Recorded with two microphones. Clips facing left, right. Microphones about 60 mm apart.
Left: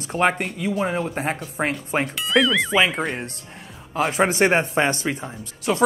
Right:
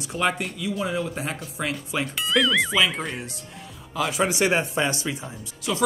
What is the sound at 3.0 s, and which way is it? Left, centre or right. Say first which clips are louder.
Speech: left 5 dB; left.